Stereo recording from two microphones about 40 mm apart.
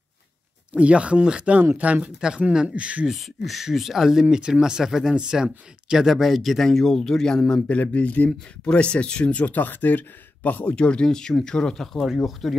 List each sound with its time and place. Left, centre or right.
0.7 s speech: right
1.8 s speech: right
2.1 s speech: centre
2.7 s speech: right
3.1 s speech: centre
7.6 s speech: left
8.3 s speech: left
10.9 s speech: centre